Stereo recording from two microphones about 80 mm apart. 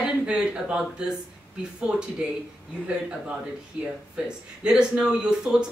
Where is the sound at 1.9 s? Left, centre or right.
Centre.